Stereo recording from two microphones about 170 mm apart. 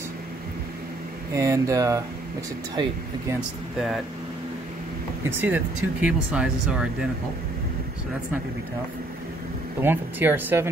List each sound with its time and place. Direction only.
1.3 s speech: 20° right (ahead or behind)
3.3 s speech: centre (ahead or behind)
5.4 s speech: 10° right (ahead or behind)
9.8 s speech: 10° right (ahead or behind)